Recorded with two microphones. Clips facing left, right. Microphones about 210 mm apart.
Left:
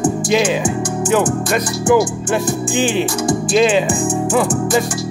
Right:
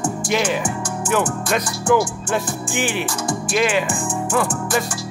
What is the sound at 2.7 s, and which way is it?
Music, 20° left (ahead or behind).